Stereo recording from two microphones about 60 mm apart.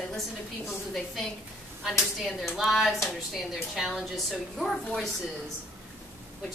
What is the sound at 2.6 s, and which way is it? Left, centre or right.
A woman's voice, centre.